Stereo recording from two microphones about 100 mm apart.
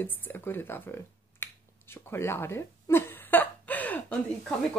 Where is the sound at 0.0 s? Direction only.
20° left (ahead or behind).